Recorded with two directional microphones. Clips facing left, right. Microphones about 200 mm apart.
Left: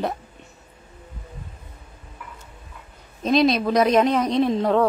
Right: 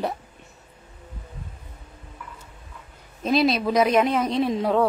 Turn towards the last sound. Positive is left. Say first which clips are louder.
# left 2 dB
turn(degrees=-10)  # may be behind; listen again after turning